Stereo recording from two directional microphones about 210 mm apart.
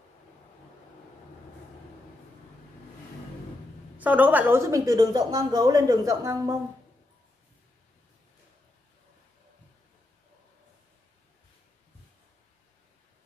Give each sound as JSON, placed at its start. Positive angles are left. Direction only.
{"t": 4.0, "sound": "a woman's voice", "side_deg": -10}